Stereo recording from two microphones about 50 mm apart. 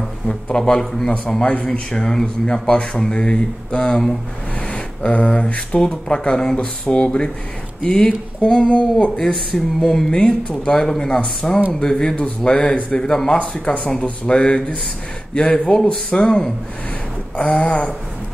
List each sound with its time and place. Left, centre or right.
0.3 s a man's voice: centre
9.1 s speech: centre
10.1 s speech: centre